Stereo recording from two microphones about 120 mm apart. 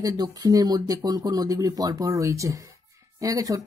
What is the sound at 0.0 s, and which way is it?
Speech, 30° right (ahead or behind).